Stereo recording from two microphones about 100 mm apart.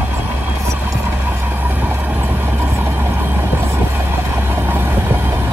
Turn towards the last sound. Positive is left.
turn(degrees=-20)  # may be behind; listen again after turning